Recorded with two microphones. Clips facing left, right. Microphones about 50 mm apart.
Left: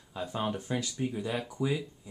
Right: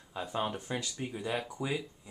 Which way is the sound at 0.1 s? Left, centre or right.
Centre.